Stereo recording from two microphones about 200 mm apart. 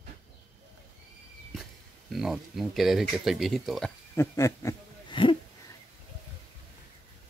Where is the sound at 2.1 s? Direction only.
Centre (ahead or behind).